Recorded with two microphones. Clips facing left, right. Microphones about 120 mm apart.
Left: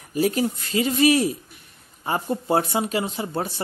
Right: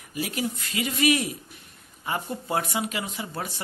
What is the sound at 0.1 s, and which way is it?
Speech, 35° left (ahead or behind).